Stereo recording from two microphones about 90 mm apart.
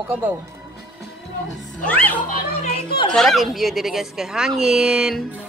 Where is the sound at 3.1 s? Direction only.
Centre (ahead or behind).